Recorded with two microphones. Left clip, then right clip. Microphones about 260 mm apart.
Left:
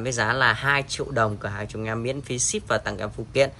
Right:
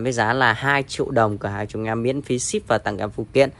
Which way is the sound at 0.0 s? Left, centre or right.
Centre.